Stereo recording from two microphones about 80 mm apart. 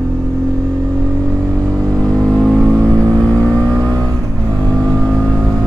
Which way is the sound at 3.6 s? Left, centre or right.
Right.